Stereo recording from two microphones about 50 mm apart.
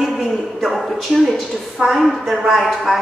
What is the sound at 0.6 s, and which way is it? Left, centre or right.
A woman's voice, centre.